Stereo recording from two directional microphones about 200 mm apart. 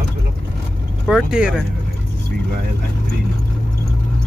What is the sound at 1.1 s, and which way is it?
Speech, 5° right (ahead or behind).